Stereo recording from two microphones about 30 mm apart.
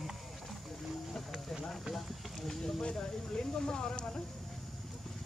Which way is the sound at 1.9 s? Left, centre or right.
Centre.